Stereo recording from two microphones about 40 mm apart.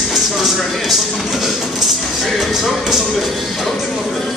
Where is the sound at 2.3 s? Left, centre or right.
Centre.